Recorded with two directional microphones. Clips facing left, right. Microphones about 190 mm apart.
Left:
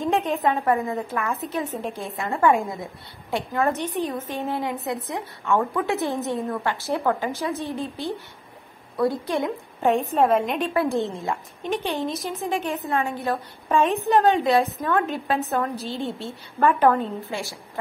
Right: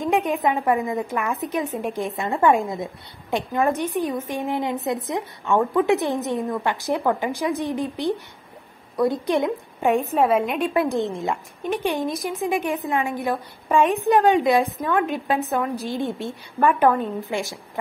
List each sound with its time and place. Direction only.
0.0 s a woman's voice: 15° right (ahead or behind)